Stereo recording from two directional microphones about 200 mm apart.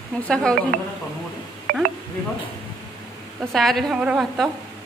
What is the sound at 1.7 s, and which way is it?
Speech, 45° right (ahead or behind).